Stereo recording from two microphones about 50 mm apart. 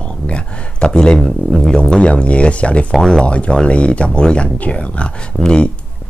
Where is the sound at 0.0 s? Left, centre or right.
Left.